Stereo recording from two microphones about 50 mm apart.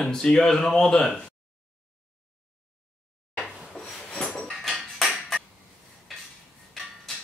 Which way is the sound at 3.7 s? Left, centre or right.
Centre.